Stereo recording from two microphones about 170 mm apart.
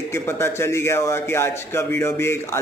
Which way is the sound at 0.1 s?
15° left (ahead or behind).